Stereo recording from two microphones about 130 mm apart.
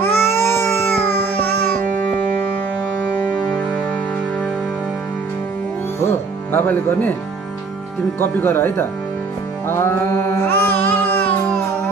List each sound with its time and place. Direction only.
0.0 s a sound: 20° left (ahead or behind)
6.5 s speech: 15° left (ahead or behind)
8.2 s speech: 15° left (ahead or behind)
9.7 s music: 20° left (ahead or behind)